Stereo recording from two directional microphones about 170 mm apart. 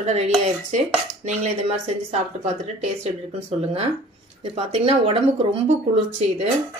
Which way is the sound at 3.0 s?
40° right (ahead or behind).